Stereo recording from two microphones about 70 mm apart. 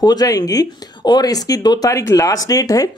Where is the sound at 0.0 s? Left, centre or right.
Left.